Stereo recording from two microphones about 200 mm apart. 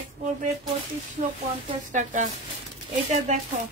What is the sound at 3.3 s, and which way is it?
Speech, 35° right (ahead or behind).